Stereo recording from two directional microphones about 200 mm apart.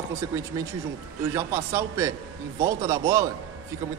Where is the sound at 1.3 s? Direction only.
15° right (ahead or behind).